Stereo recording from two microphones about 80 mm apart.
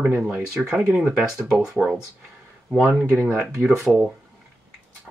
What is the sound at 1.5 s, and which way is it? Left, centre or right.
Speech, centre.